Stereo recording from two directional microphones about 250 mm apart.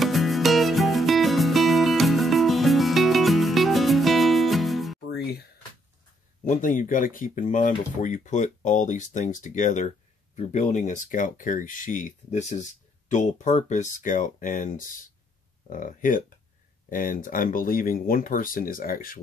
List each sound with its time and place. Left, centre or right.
0.0 s music: centre
6.4 s speech: left